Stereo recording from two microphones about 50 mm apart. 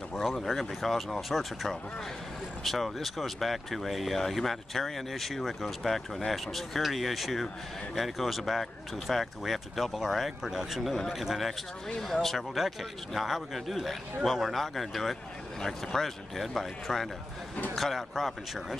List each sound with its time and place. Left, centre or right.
0.1 s speech: centre